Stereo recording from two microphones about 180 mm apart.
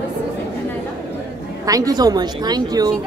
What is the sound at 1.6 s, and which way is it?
A woman's voice, 20° right (ahead or behind).